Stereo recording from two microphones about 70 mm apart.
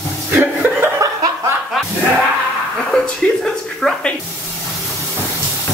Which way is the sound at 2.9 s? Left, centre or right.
Centre.